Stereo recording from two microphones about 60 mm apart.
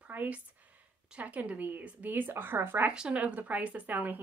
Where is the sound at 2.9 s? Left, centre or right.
Centre.